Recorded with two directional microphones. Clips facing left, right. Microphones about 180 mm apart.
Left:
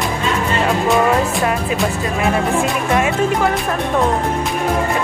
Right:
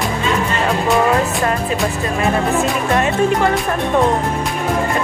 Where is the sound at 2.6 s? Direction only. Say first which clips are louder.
Even; 5° left (ahead or behind).